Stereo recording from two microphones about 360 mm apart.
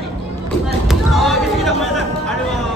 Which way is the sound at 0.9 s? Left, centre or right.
Centre.